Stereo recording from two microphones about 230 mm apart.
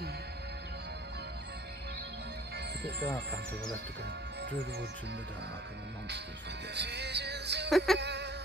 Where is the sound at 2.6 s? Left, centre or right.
Right.